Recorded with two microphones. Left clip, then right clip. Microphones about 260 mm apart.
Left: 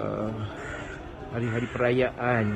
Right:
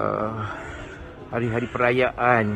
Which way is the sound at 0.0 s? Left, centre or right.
Centre.